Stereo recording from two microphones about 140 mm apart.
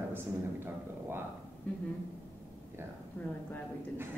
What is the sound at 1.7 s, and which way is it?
Speech, 10° left (ahead or behind).